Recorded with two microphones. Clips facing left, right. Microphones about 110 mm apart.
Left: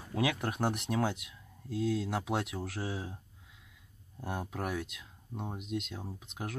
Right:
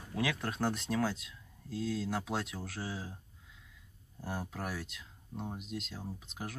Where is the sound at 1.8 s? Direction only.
5° left (ahead or behind).